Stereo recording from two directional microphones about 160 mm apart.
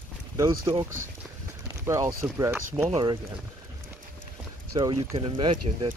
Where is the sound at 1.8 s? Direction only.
20° right (ahead or behind).